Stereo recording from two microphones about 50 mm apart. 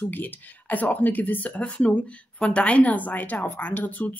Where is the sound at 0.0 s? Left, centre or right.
Left.